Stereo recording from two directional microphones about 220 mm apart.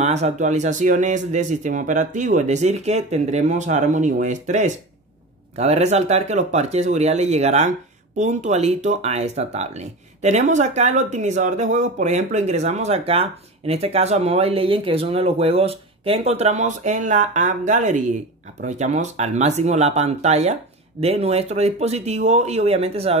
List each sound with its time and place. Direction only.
0.0 s speech: 30° right (ahead or behind)